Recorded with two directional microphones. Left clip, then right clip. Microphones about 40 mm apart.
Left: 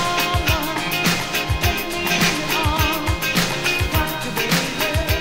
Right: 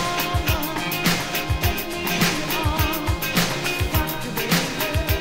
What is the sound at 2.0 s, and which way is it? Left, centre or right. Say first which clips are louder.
Music: left 3 dB; right.